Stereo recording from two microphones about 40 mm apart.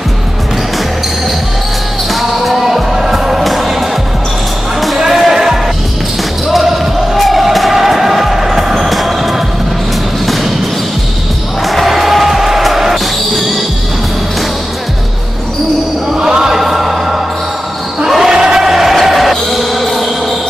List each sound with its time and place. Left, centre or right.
2.2 s music: centre
4.7 s music: centre
6.5 s basketball bounce: centre
11.6 s music: centre
16.2 s music: centre
18.0 s basketball bounce: centre